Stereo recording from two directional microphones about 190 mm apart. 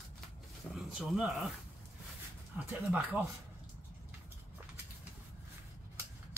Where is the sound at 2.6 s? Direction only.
10° right (ahead or behind).